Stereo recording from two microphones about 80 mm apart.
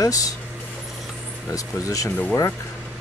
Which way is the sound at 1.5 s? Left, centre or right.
Left.